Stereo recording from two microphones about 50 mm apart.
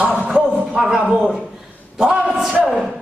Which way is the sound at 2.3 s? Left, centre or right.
Centre.